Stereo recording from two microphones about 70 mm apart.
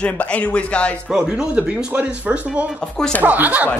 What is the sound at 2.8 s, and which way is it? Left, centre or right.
Speech, centre.